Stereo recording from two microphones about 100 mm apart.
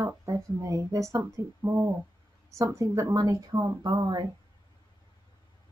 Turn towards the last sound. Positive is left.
turn(degrees=-50)  # may be behind; listen again after turning